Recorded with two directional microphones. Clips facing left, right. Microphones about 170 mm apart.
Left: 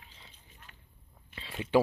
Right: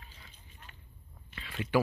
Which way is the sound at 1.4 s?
25° left (ahead or behind).